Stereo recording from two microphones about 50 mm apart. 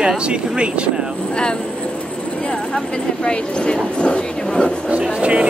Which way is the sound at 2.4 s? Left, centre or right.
Centre.